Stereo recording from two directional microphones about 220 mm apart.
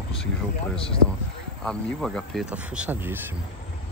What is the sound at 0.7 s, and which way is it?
Speech, 25° left (ahead or behind).